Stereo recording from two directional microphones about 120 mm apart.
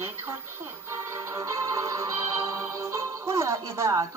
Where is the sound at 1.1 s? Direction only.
25° right (ahead or behind).